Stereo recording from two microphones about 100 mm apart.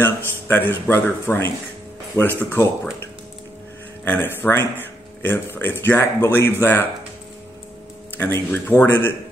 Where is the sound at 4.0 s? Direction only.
20° left (ahead or behind).